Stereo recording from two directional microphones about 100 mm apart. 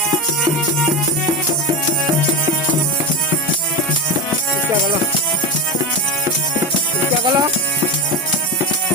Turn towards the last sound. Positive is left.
turn(degrees=-50)  # may be behind; listen again after turning